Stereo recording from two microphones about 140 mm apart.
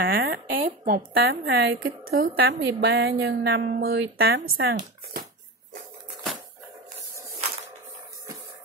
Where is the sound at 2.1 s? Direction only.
80° right.